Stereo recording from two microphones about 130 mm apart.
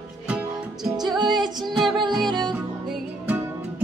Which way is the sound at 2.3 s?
35° right (ahead or behind).